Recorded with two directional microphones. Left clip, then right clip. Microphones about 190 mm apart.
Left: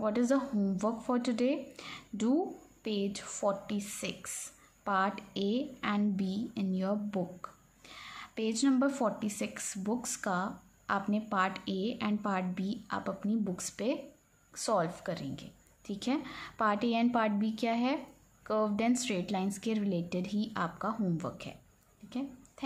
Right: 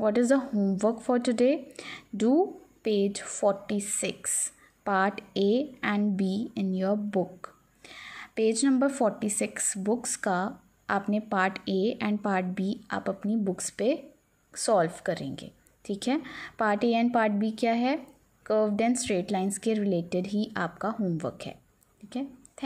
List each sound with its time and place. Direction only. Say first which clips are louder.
0.0 s a woman's voice: right 6 dB; 25° right (ahead or behind)